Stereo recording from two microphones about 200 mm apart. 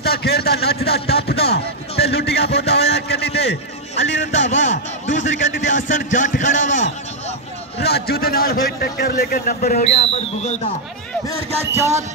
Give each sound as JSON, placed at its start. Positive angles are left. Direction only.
{"t": 0.0, "sound": "a man's voice", "side_deg": 50}
{"t": 4.3, "sound": "a man's voice", "side_deg": 35}
{"t": 7.8, "sound": "a man's voice", "side_deg": 55}
{"t": 9.9, "sound": "a man's voice", "side_deg": 30}